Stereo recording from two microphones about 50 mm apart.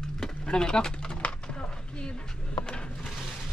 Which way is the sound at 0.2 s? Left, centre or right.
Centre.